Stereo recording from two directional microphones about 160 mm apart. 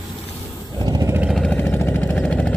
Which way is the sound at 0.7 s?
25° right (ahead or behind).